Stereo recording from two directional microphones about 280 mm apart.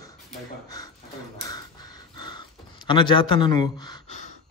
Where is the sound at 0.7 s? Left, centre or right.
Centre.